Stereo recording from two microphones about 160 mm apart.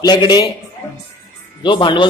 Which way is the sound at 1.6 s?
30° left (ahead or behind).